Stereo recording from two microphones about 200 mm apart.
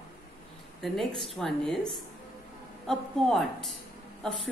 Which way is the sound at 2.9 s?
Centre (ahead or behind).